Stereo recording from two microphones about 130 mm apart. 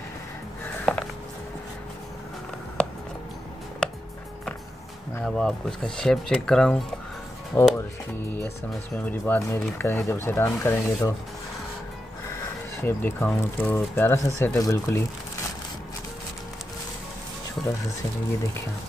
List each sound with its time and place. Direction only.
0.9 s a sound: centre (ahead or behind)
2.8 s a sound: 5° left (ahead or behind)
5.2 s speech: 5° left (ahead or behind)
7.5 s speech: 15° left (ahead or behind)
8.9 s speech: 15° left (ahead or behind)
12.8 s speech: 15° left (ahead or behind)